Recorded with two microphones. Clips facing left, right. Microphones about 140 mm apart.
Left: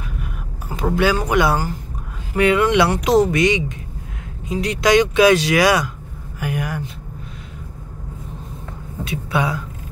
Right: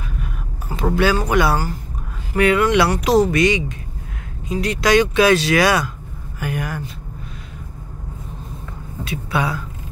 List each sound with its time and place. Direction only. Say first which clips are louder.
0.9 s speech: even; 15° left (ahead or behind)
9.0 s speech: left 1 dB; 20° left (ahead or behind)